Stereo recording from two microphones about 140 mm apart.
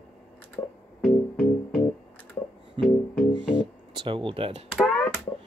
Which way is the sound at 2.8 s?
40° right (ahead or behind).